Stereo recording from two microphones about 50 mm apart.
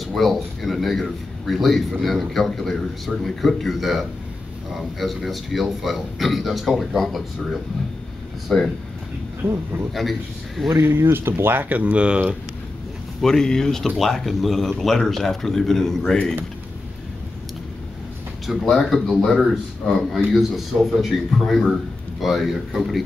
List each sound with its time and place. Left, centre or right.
0.0 s speech: centre
8.5 s speech: centre
9.4 s speech: right
10.9 s speech: right
11.7 s speech: right
13.2 s speech: centre
18.5 s speech: centre
19.5 s speech: centre